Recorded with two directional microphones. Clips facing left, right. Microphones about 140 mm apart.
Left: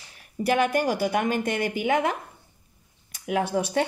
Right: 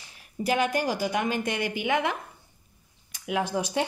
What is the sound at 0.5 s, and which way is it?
Speech, 55° left (ahead or behind).